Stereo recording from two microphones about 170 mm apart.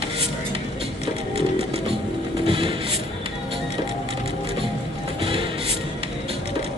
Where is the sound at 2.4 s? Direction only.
30° right (ahead or behind).